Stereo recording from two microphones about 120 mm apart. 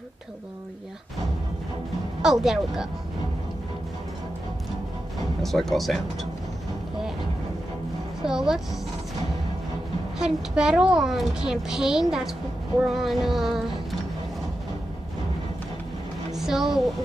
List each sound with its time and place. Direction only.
2.2 s a woman's voice: 5° right (ahead or behind)
5.4 s a woman's voice: centre (ahead or behind)
8.2 s a woman's voice: 5° right (ahead or behind)
10.1 s a woman's voice: 5° right (ahead or behind)
16.3 s speech: 5° right (ahead or behind)